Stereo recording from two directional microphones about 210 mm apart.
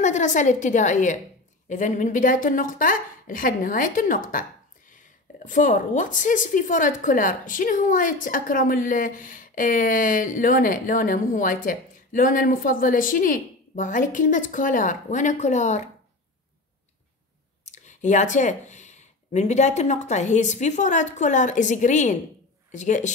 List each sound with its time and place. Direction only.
0.0 s a woman's voice: 35° left (ahead or behind)
17.6 s a woman's voice: 35° left (ahead or behind)